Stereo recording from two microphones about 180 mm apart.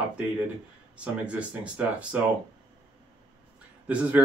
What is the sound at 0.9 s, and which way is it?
Speech, 5° right (ahead or behind).